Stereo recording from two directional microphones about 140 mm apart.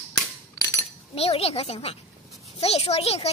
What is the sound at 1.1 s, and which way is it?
Speech, 45° left (ahead or behind).